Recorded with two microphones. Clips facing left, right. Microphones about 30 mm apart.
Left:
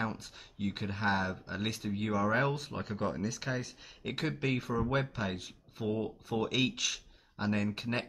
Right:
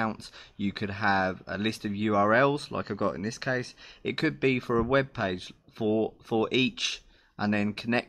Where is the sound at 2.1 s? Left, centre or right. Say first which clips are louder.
Right 8 dB; right.